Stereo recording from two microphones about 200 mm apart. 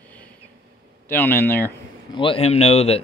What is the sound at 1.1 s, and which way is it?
Speech, 10° left (ahead or behind).